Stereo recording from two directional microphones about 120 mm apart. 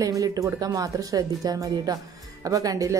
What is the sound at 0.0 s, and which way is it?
A woman's voice, 30° right (ahead or behind).